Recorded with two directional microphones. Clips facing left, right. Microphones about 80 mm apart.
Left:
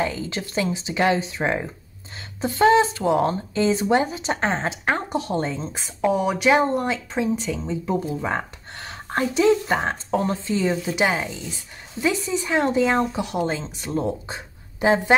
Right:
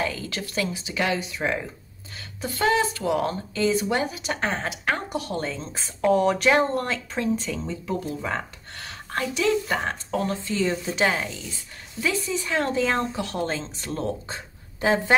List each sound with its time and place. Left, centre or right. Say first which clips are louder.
0.0 s speech: left 3 dB; left
7.8 s speech: left 5 dB; left